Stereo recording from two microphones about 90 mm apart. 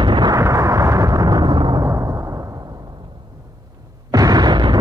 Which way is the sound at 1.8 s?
35° right (ahead or behind).